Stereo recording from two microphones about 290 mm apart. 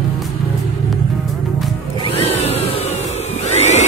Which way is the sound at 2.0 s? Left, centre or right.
Centre.